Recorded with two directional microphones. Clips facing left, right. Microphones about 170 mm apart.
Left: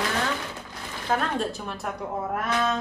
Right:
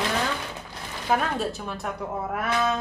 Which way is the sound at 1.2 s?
Centre (ahead or behind).